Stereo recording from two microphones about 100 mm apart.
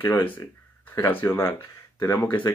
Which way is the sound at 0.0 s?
20° left (ahead or behind).